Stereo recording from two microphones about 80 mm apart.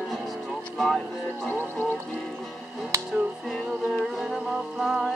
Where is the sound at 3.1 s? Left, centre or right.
Centre.